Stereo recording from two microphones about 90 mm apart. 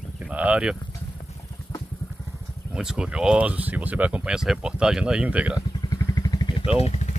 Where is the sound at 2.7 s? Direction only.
10° right (ahead or behind).